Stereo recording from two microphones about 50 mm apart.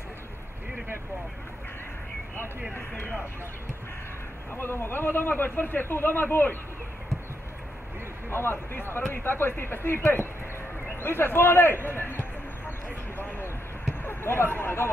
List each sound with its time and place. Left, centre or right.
4.5 s a man's voice: left
8.3 s a man's voice: left
11.8 s a sound: left
14.0 s speech: left